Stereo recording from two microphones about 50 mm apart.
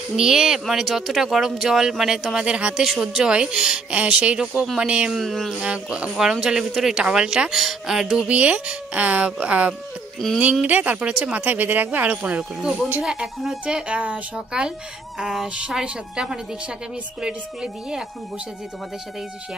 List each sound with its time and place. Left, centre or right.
0.1 s speech: centre
2.8 s speech: centre
5.1 s a sound: centre
5.6 s speech: centre
8.3 s speech: right
11.3 s speech: right
13.0 s speech: centre
13.9 s speech: right
14.3 s speech: centre